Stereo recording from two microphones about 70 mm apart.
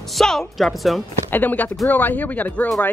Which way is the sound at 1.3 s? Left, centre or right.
Left.